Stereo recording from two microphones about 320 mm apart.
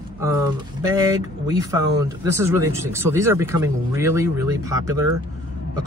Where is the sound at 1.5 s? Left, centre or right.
Centre.